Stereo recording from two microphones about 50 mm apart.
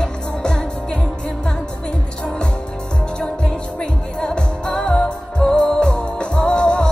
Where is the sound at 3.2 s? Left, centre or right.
Centre.